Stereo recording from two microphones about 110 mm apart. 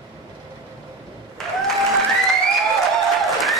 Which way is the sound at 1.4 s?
5° left (ahead or behind).